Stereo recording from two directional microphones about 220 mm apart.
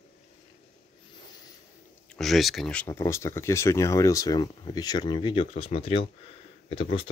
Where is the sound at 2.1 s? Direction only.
Centre (ahead or behind).